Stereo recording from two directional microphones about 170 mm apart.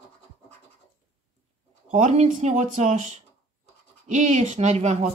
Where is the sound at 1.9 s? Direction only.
45° right (ahead or behind).